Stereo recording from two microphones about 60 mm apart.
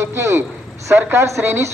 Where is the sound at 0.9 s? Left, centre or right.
Right.